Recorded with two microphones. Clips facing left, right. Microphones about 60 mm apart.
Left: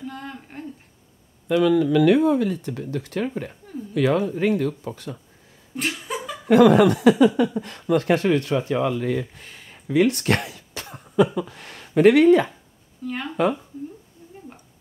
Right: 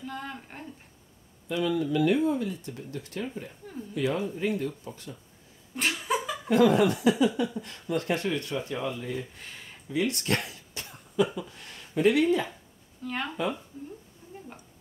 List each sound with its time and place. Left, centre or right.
0.0 s a sound: centre
1.5 s speech: left
5.8 s laughter: centre
6.5 s speech: left
13.0 s speech: centre